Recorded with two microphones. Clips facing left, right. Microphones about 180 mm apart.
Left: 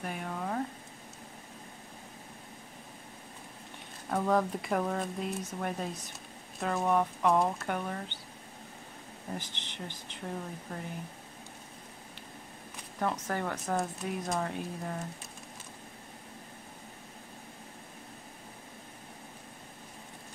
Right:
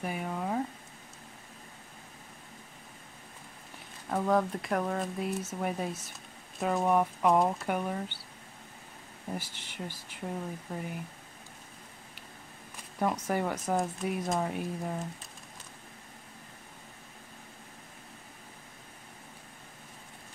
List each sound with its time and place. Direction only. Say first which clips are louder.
0.0 s speech: right 2 dB; 10° right (ahead or behind)
4.1 s speech: right 1 dB; centre (ahead or behind)
9.3 s speech: right 2 dB; 10° right (ahead or behind)
13.0 s speech: right 3 dB; 10° right (ahead or behind)